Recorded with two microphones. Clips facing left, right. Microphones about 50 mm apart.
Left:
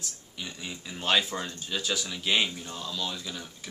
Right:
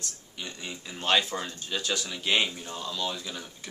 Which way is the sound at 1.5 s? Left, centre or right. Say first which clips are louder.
Even; centre.